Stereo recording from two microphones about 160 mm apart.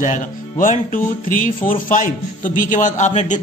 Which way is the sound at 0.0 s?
50° left (ahead or behind).